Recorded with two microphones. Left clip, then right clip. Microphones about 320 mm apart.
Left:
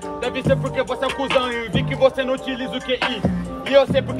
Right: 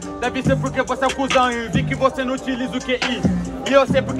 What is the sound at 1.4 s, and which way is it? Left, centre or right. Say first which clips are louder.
Speech: right 3 dB; centre.